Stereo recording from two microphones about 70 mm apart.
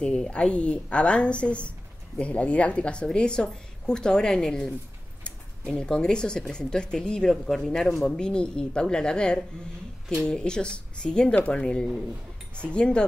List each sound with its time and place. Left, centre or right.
0.0 s speech: centre